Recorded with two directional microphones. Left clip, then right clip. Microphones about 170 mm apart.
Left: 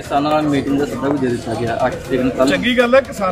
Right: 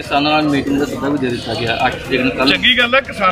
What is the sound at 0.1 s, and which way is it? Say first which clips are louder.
Speech: right 1 dB; 50° left (ahead or behind).